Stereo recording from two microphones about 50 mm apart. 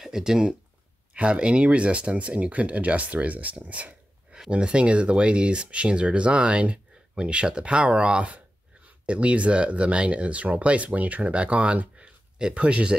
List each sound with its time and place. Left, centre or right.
0.0 s speech: centre